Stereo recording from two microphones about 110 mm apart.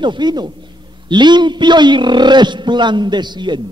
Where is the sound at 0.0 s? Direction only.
45° right (ahead or behind).